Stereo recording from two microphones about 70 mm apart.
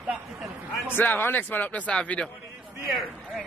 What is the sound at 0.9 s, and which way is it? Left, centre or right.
A man's voice, left.